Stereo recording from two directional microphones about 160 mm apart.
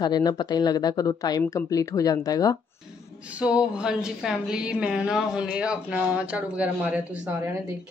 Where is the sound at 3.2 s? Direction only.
5° right (ahead or behind).